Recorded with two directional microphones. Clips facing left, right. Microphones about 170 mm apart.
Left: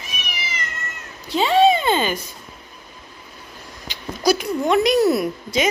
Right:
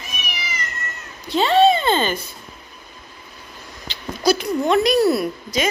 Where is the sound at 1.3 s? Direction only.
5° left (ahead or behind).